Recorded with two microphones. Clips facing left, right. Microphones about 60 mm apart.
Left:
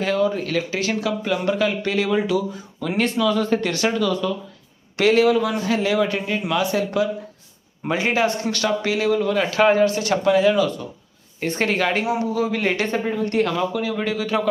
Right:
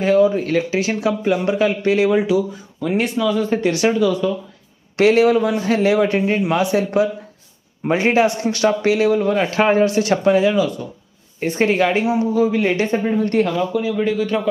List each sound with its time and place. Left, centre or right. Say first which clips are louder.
0.0 s speech: right 6 dB; right
2.1 s speech: right 4 dB; centre
4.9 s a man's voice: right 3 dB; right
10.4 s speech: right 1 dB; centre
12.4 s a man's voice: right 5 dB; centre
12.8 s speech: right 4 dB; right
14.0 s a man's voice: right 3 dB; centre